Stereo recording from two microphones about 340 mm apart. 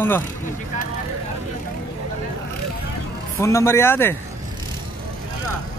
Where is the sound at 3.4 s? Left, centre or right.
Centre.